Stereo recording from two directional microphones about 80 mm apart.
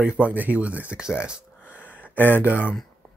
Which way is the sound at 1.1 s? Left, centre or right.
Centre.